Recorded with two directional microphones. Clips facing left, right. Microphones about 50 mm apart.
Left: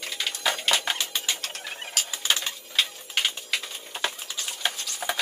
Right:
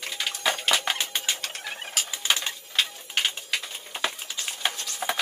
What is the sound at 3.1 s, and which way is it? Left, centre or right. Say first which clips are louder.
Typing: even; centre.